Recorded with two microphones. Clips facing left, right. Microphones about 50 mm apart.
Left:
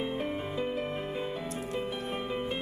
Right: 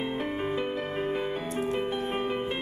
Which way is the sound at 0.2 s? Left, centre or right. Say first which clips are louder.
Right 4 dB; right.